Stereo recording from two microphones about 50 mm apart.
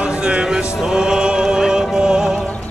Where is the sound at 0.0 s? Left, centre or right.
Centre.